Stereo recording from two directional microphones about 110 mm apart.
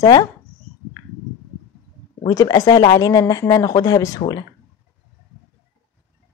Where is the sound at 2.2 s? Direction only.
35° left (ahead or behind).